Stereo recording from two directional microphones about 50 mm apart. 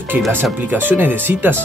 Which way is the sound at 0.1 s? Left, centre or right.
Right.